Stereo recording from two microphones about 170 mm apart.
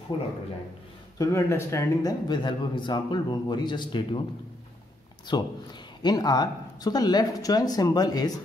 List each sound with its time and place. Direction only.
1.1 s speech: 20° left (ahead or behind)
5.3 s speech: 25° left (ahead or behind)